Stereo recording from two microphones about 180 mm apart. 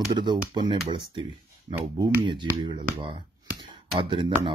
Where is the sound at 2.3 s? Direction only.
25° right (ahead or behind).